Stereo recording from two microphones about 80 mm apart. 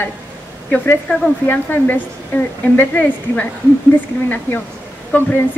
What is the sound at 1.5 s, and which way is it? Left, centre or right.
A woman's voice, left.